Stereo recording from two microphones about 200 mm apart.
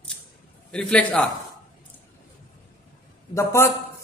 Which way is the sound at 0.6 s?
5° left (ahead or behind).